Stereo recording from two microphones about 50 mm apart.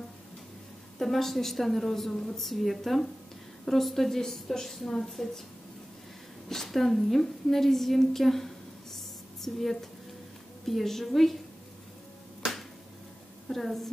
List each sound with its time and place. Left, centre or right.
0.9 s a woman's voice: centre
6.5 s a woman's voice: centre
13.5 s a sound: centre